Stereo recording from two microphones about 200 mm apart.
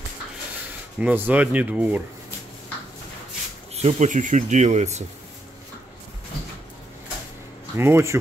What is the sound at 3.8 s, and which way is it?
Speech, 40° right (ahead or behind).